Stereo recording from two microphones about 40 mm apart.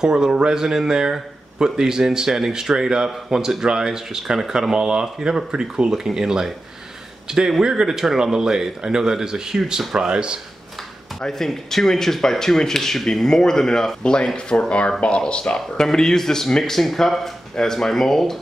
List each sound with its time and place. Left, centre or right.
0.0 s speech: centre
11.1 s speech: centre; by 15.6 s left
15.8 s speech: centre